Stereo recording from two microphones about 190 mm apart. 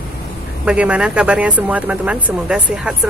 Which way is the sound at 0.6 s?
5° right (ahead or behind).